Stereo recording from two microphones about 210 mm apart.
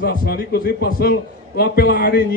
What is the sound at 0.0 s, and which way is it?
A man's voice, 45° left (ahead or behind).